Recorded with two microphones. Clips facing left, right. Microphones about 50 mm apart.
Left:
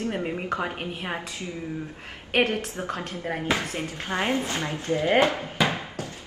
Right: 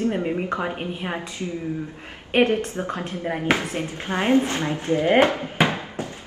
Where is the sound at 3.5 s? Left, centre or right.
Right.